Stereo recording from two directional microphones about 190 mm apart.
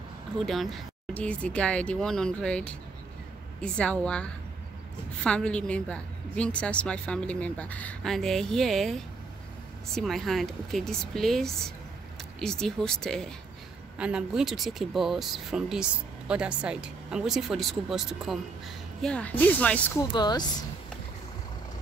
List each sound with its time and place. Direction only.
0.5 s speech: centre (ahead or behind)
20.1 s speech: 20° left (ahead or behind)